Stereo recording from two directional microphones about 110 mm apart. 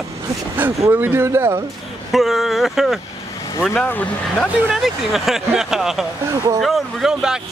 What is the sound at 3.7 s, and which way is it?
Speech, 15° left (ahead or behind).